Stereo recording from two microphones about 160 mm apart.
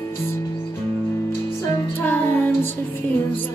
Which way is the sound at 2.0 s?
15° left (ahead or behind).